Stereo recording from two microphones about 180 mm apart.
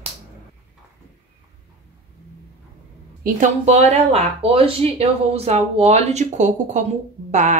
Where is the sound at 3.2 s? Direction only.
40° right (ahead or behind).